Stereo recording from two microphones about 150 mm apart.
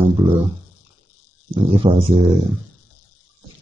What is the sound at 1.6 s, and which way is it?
Speech, 35° right (ahead or behind).